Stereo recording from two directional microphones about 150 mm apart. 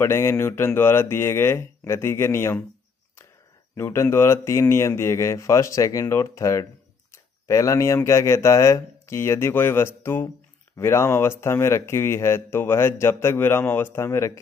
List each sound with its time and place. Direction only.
0.0 s speech: 15° left (ahead or behind)
3.7 s speech: 15° left (ahead or behind)